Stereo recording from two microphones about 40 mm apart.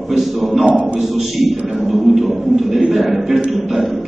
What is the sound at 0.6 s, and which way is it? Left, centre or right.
Speech, right.